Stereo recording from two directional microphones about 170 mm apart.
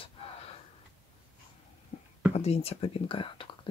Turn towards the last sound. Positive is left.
turn(degrees=35)  # may be behind; listen again after turning